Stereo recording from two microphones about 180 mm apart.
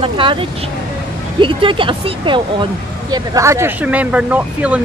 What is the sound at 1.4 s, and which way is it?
Speech, 30° right (ahead or behind).